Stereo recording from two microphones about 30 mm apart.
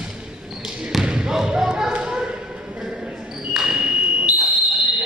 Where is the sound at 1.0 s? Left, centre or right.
Right.